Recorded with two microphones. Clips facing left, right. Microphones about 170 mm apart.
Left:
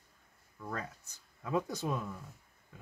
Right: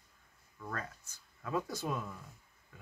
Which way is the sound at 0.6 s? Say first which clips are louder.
Left 2 dB; 15° left (ahead or behind).